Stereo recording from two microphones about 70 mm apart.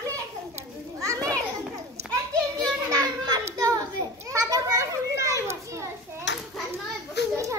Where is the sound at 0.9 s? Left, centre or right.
Right.